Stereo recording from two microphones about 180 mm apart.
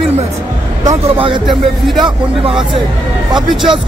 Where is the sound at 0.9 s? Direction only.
30° right (ahead or behind).